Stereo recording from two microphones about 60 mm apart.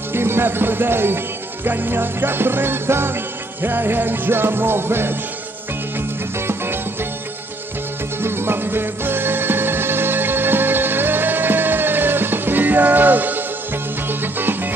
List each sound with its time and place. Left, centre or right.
0.1 s speech: right
3.6 s music: right
8.2 s music: right